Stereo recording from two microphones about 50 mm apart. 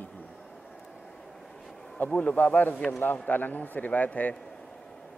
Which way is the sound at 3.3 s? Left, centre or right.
Left.